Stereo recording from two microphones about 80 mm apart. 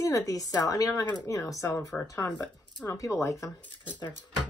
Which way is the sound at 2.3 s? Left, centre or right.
Left.